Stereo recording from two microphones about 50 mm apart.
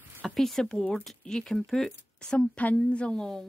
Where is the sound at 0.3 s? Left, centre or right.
Centre.